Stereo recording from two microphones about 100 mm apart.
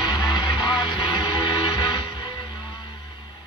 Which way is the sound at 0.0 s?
45° left (ahead or behind).